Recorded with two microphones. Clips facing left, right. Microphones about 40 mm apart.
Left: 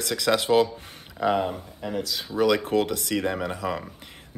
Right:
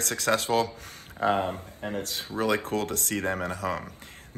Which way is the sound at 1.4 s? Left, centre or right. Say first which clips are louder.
Left 2 dB; right.